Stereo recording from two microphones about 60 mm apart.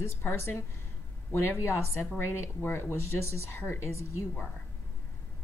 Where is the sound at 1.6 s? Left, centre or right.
Left.